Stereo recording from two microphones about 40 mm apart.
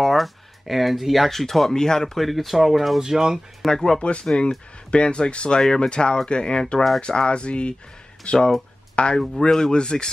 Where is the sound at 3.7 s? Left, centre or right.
Centre.